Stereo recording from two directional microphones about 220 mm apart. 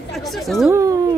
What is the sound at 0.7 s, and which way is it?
Speech, 15° right (ahead or behind).